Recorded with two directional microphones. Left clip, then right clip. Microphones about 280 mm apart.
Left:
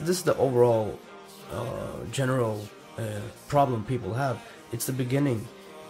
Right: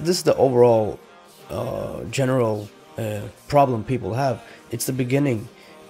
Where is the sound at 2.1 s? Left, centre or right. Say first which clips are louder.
Right 6 dB; centre.